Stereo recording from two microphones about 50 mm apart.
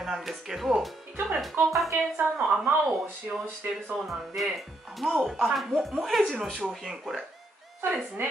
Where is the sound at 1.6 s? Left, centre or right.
Right.